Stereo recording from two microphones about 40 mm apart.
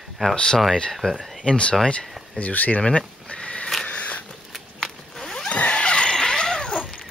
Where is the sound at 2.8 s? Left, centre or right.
Left.